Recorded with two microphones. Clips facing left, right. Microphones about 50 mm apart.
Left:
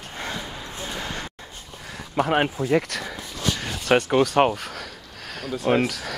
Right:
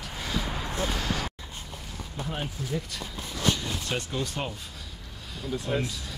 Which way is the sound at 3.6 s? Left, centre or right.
Left.